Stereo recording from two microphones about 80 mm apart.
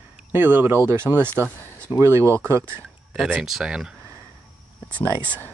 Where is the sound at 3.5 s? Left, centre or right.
Centre.